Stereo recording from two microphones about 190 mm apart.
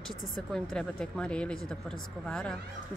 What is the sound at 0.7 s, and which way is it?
A woman's voice, 5° left (ahead or behind).